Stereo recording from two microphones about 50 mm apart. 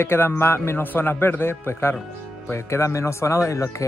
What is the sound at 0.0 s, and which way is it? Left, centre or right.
Speech, left.